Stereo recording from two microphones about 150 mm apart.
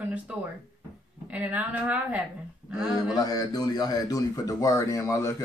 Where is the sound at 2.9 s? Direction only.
25° left (ahead or behind).